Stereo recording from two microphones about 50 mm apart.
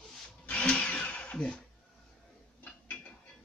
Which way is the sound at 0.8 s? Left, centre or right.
Left.